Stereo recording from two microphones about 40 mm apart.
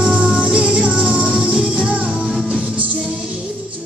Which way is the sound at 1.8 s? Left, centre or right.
Right.